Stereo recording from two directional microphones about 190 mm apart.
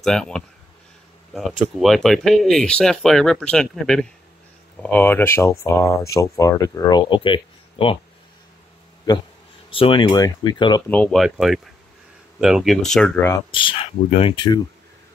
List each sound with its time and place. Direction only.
0.0 s speech: 5° left (ahead or behind)
1.6 s speech: centre (ahead or behind); by 8.0 s 30° left (ahead or behind)
9.7 s speech: 30° left (ahead or behind)
10.9 s speech: 5° left (ahead or behind)
13.5 s speech: 25° left (ahead or behind)